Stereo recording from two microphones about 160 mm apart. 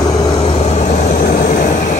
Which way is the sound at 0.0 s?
30° left (ahead or behind).